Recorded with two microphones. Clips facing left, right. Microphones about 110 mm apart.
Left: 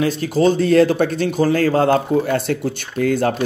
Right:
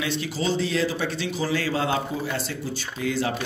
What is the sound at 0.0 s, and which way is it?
Speech, 50° left (ahead or behind).